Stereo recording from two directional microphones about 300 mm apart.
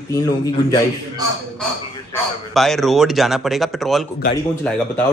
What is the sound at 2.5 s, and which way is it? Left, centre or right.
Speech, centre.